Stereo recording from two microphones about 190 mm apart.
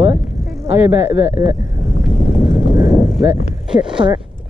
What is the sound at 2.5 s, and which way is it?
Vehicle, 20° right (ahead or behind).